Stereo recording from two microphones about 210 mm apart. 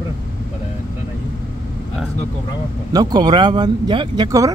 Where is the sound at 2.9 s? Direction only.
20° right (ahead or behind).